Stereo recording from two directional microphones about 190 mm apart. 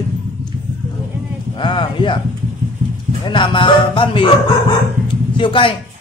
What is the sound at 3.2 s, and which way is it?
Speech, 25° left (ahead or behind).